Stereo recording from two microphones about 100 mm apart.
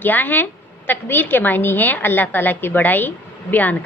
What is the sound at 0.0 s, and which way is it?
A woman's voice, 20° left (ahead or behind).